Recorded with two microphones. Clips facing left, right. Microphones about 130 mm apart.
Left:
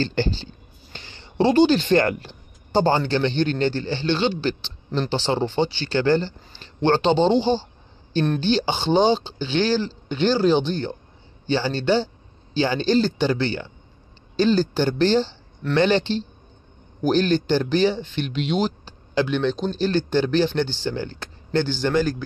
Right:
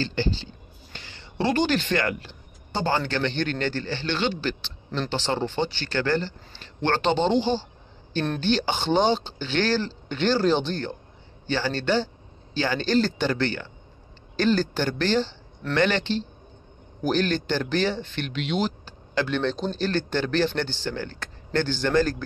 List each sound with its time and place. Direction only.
0.0 s speech: 40° left (ahead or behind)
0.9 s a sound: 25° left (ahead or behind)
1.9 s speech: 35° left (ahead or behind)
3.0 s a man's voice: 20° left (ahead or behind)
8.4 s a man's voice: 20° left (ahead or behind)